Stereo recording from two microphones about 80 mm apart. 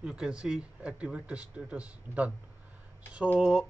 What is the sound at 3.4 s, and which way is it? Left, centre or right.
Speech, centre.